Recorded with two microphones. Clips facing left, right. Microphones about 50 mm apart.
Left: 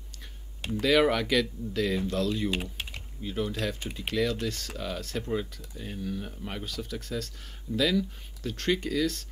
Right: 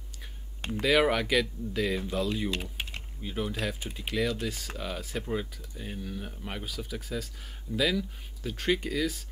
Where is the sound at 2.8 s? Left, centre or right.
Right.